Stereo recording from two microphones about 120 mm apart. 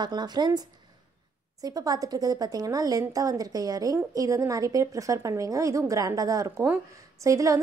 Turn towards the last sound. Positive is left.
turn(degrees=-25)  # may be behind; listen again after turning